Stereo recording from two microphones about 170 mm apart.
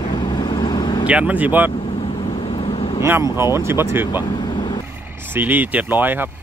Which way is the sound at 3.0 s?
15° right (ahead or behind).